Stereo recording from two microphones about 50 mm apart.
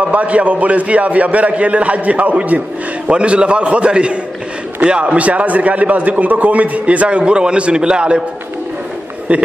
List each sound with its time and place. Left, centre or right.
0.0 s a man's voice: right
3.1 s a man's voice: right
9.3 s a man's voice: right